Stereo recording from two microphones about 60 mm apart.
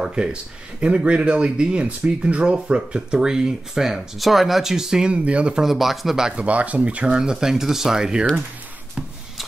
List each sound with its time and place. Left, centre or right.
0.0 s speech: centre
5.1 s speech: centre
5.6 s speech: centre
6.3 s speech: right